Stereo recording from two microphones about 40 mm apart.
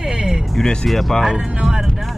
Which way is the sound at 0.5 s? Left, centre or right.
Centre.